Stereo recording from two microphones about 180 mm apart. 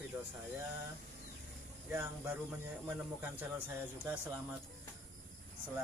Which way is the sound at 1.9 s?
10° right (ahead or behind).